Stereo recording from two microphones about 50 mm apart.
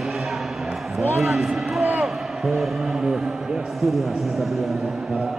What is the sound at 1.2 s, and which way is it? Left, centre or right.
Speech, centre.